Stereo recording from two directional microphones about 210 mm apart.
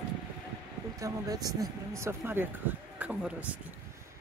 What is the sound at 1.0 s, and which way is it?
A man's voice, 15° right (ahead or behind).